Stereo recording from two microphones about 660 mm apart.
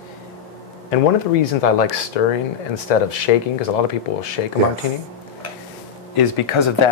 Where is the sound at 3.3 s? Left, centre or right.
Left.